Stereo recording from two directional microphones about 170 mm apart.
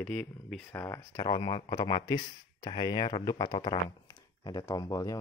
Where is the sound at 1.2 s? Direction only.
30° left (ahead or behind).